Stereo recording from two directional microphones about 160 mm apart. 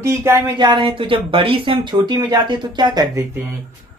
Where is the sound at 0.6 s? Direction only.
30° right (ahead or behind).